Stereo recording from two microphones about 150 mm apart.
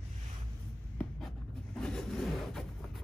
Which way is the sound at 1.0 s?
5° left (ahead or behind).